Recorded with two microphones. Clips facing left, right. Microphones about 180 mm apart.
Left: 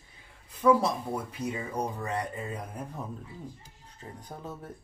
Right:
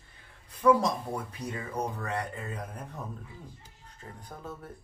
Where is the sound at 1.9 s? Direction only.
15° left (ahead or behind).